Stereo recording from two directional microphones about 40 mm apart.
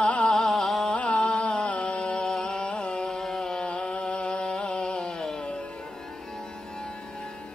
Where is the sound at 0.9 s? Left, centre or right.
Left.